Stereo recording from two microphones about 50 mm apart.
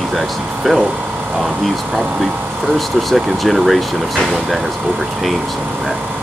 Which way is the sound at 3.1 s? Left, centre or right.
Centre.